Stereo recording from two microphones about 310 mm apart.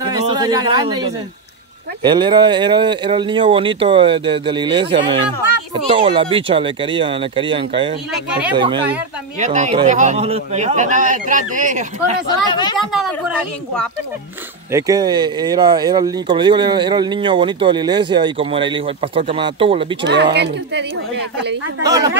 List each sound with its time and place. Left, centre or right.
0.0 s a sound: centre
2.0 s speech: centre
8.1 s speech: centre
8.5 s speech: centre
12.3 s speech: centre
12.7 s speech: centre
14.7 s speech: centre
20.3 s a woman's voice: right
21.8 s speech: centre